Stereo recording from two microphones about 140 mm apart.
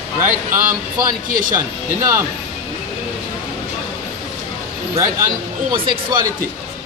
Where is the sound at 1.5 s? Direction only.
20° right (ahead or behind).